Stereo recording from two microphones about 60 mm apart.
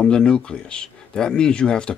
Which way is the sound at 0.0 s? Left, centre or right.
Centre.